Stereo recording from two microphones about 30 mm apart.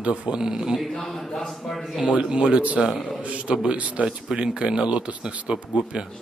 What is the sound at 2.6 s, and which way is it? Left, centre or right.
Speech, right.